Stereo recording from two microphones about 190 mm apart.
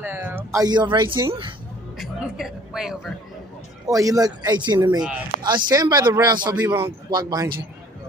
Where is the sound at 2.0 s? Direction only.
Centre (ahead or behind).